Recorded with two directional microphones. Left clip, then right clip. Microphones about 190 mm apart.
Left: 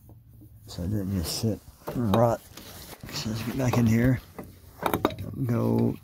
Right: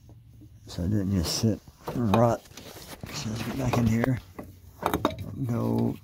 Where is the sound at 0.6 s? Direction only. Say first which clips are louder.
Right 3 dB; 30° right (ahead or behind).